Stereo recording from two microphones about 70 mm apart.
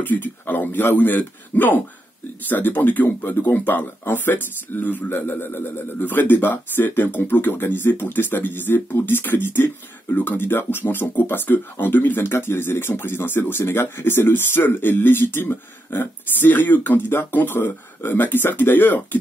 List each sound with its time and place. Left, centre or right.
0.0 s speech: left